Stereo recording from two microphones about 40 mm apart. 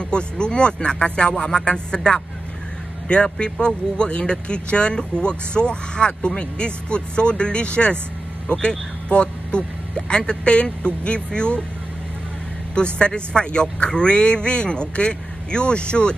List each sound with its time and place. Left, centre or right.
0.0 s speech: left
12.7 s speech: left